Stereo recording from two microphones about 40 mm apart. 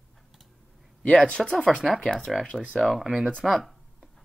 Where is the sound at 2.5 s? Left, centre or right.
Centre.